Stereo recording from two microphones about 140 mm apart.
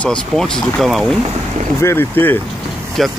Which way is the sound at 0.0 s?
5° left (ahead or behind).